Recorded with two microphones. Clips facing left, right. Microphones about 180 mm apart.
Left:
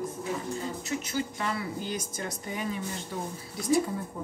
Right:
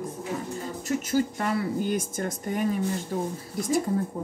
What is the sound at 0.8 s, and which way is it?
Speech, 45° right (ahead or behind).